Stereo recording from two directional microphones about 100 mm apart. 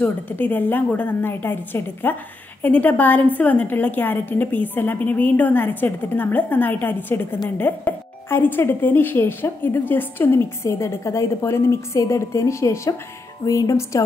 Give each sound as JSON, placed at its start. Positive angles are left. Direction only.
{"t": 0.0, "sound": "a woman's voice", "side_deg": 15}